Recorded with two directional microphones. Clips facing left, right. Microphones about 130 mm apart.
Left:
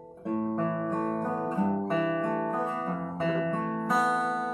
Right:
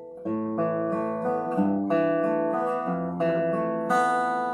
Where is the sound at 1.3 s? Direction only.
10° right (ahead or behind).